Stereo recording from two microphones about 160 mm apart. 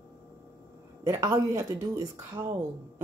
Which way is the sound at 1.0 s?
20° right (ahead or behind).